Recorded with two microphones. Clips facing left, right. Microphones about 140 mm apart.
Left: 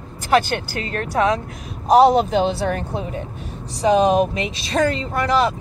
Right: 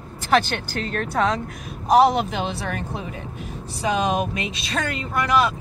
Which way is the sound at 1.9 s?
30° left (ahead or behind).